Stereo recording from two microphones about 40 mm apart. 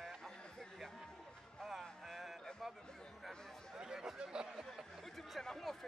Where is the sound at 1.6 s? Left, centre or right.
Centre.